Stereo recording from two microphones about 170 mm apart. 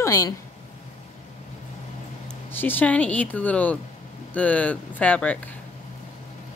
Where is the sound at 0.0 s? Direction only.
20° left (ahead or behind).